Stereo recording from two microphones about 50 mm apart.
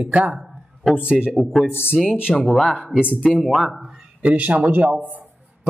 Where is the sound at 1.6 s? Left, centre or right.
Left.